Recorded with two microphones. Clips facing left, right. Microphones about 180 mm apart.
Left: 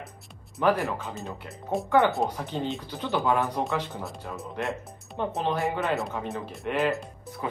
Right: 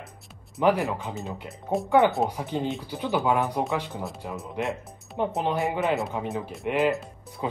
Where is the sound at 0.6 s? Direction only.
20° right (ahead or behind).